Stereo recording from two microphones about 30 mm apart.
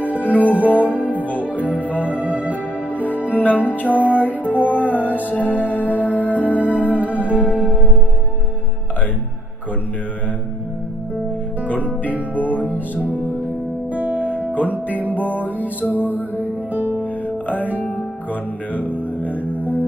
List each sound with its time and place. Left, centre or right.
0.5 s music: left
1.4 s organ: right
1.8 s music: left
2.2 s music: right
3.3 s music: left
7.5 s music: right
12.0 s music: left
12.5 s music: right
13.9 s music: right
14.3 s music: left
15.1 s music: left
16.0 s music: left